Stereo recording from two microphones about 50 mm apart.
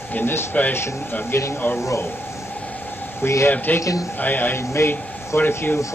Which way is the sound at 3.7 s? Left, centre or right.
Left.